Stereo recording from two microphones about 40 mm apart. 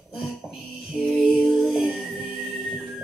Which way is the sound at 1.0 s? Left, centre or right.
Right.